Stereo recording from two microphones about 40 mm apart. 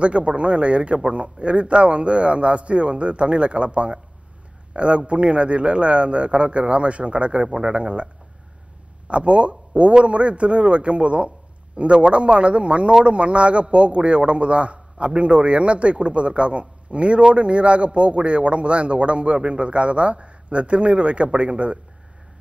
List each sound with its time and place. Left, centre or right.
0.0 s a man's voice: right